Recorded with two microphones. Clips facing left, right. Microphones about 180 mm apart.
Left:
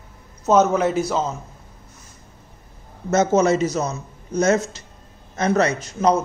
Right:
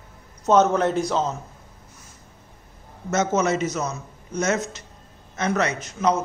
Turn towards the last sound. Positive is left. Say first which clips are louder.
# left 4 dB
turn(degrees=35)  # may be behind; listen again after turning